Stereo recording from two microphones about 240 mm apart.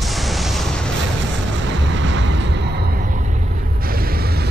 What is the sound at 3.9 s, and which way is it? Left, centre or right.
Mechanisms, right.